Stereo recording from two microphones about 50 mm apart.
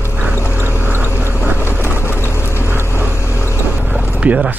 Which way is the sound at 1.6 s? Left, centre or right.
Left.